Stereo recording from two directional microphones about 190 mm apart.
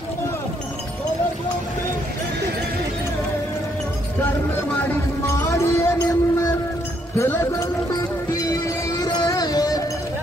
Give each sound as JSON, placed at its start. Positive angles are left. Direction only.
{"t": 5.2, "sound": "music", "side_deg": 15}